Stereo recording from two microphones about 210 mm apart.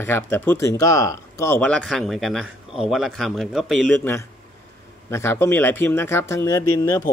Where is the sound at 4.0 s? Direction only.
10° left (ahead or behind).